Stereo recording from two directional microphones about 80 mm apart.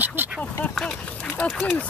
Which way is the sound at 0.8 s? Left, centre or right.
Centre.